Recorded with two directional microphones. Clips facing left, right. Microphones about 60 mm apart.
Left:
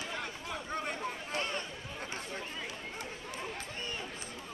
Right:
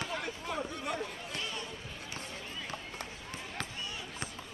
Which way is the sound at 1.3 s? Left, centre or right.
Left.